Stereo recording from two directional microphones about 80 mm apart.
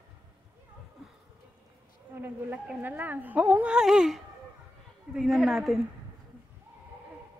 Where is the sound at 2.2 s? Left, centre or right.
Centre.